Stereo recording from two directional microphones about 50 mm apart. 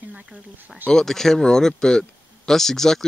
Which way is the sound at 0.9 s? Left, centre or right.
Centre.